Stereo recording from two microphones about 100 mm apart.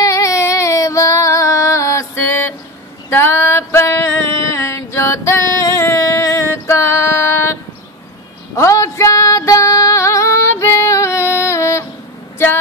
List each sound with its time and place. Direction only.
0.0 s music: 30° left (ahead or behind)
3.1 s female singing: 25° left (ahead or behind)
8.5 s female singing: 30° left (ahead or behind)